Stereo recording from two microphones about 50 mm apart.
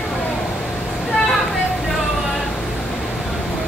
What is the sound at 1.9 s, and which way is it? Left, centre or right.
Vehicle, centre.